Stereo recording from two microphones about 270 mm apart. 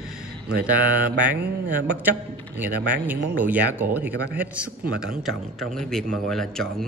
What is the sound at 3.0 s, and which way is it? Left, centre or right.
A man's voice, centre.